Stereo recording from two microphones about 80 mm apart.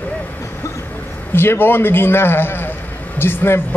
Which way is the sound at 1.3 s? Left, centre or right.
Left.